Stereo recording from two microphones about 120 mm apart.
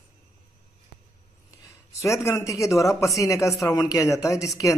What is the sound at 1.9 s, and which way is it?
A man's voice, 25° left (ahead or behind).